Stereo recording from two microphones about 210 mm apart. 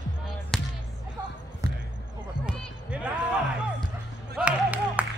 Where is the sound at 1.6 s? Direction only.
15° right (ahead or behind).